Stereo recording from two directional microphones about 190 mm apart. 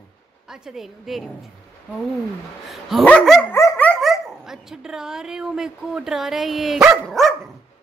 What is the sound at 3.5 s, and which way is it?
Speech, 15° left (ahead or behind).